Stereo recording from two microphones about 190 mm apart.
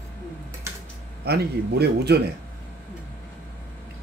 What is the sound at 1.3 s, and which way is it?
Speech, 60° right (ahead or behind).